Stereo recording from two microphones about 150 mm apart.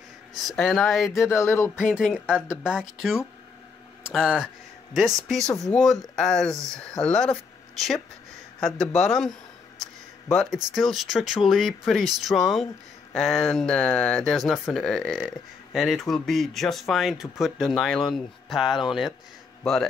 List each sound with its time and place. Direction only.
0.7 s speech: centre (ahead or behind)
1.3 s speech: 15° left (ahead or behind)
1.8 s speech: 5° right (ahead or behind)
8.5 s speech: 5° left (ahead or behind)
10.3 s speech: centre (ahead or behind)